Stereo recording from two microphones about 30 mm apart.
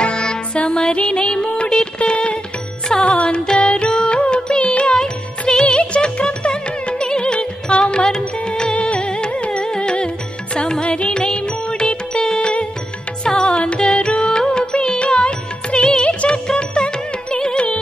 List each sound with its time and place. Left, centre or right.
0.0 s music: left
7.8 s music: left
8.7 s music: left
10.9 s music: left
13.3 s music: left
13.9 s music: left